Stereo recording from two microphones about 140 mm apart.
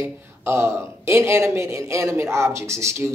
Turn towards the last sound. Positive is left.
turn(degrees=-20)  # may be behind; listen again after turning